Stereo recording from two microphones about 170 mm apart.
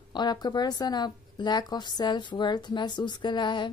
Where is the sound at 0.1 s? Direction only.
25° left (ahead or behind).